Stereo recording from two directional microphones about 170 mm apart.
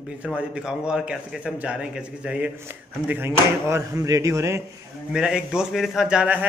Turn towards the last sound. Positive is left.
turn(degrees=-5)  # may be behind; listen again after turning